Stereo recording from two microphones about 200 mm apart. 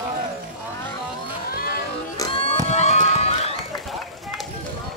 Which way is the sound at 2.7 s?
35° left (ahead or behind).